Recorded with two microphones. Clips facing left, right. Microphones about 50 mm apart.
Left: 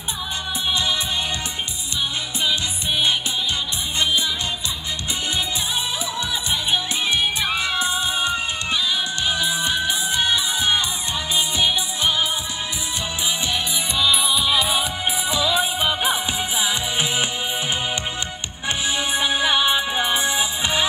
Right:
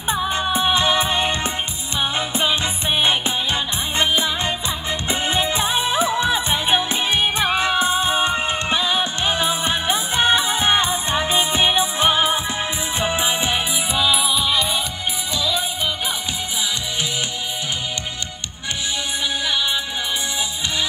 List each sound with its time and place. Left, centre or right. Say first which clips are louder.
0.1 s music: right 8 dB; right
4.0 s music: right 2 dB; right
5.3 s music: right 5 dB; right
13.9 s music: right 1 dB; centre
15.3 s music: left 2 dB; centre
19.1 s music: left 4 dB; left